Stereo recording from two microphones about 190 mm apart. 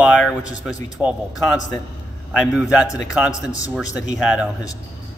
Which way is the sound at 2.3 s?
Centre (ahead or behind).